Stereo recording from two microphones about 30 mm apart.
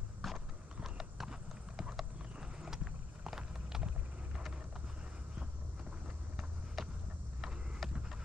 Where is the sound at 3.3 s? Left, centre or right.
Centre.